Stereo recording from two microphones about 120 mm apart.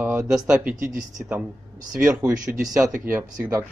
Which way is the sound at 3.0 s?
20° right (ahead or behind).